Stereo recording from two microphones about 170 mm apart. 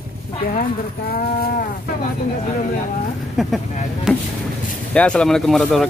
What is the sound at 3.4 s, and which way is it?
Speech, centre (ahead or behind).